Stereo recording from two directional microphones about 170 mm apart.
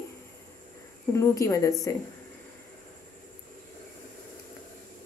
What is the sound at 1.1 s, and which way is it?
Speech, 20° left (ahead or behind).